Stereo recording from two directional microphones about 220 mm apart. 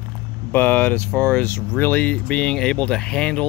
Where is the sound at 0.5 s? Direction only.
10° left (ahead or behind).